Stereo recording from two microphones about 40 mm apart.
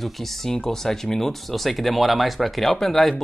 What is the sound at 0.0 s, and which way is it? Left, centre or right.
A woman's voice, centre.